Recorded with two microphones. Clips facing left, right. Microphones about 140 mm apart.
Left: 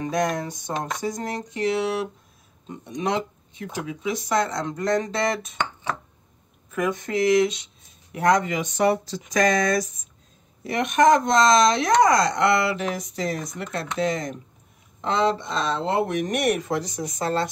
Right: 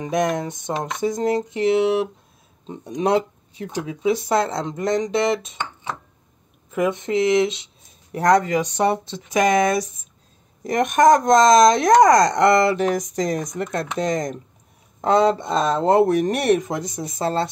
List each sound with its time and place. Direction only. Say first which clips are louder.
0.0 s speech: right 3 dB; 25° right (ahead or behind)
2.8 s speech: right 6 dB; 35° right (ahead or behind)
6.7 s speech: right 4 dB; 25° right (ahead or behind)
8.1 s speech: right 4 dB; 40° right (ahead or behind)
10.6 s speech: right 3 dB; 45° right (ahead or behind)